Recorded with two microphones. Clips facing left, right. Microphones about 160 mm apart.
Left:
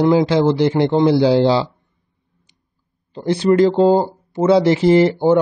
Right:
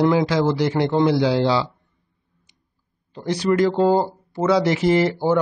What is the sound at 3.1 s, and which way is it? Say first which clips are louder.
Speech: left 5 dB; 30° left (ahead or behind).